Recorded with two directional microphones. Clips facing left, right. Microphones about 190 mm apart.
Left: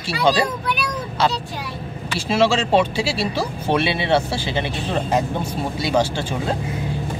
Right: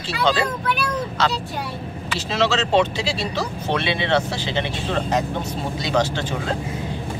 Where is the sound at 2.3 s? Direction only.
10° left (ahead or behind).